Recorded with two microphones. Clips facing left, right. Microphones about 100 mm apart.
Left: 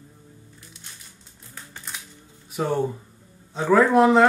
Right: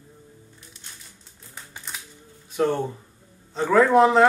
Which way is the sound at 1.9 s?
Centre (ahead or behind).